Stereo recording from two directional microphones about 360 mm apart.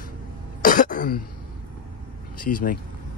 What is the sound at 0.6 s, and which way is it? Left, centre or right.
Throat clearing, left.